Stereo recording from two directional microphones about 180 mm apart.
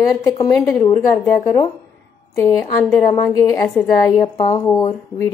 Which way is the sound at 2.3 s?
15° left (ahead or behind).